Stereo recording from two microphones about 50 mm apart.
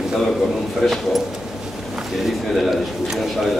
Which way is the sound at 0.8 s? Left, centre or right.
Centre.